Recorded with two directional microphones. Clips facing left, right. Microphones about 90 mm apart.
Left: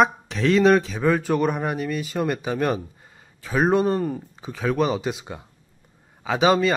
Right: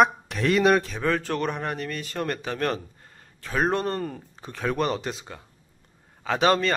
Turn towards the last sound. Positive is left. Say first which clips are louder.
# left 3 dB
turn(degrees=5)  # may be behind; listen again after turning